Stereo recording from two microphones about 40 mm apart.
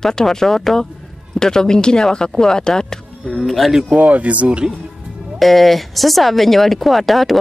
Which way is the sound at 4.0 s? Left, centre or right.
Right.